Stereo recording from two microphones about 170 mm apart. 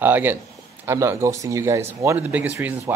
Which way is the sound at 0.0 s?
10° right (ahead or behind).